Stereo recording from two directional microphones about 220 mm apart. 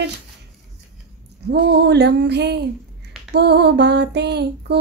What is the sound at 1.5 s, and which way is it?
Speech, 50° right (ahead or behind).